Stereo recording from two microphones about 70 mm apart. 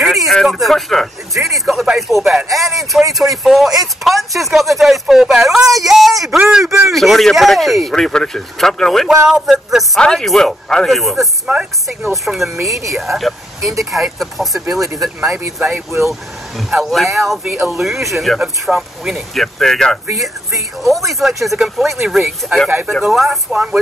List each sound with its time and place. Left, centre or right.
0.0 s speech: centre
9.1 s speech: centre
9.9 s speech: centre
11.5 s speech: right
12.0 s speech: centre
12.7 s speech: right
13.0 s speech: centre
15.7 s speech: right
16.1 s speech: centre